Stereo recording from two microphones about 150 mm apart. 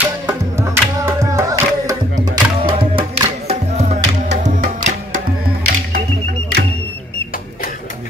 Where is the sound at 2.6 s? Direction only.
35° right (ahead or behind).